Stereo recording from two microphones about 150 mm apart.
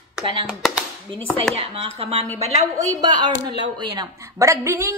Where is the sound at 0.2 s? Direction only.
35° right (ahead or behind).